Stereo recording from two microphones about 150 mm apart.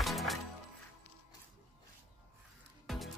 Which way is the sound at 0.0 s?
Centre (ahead or behind).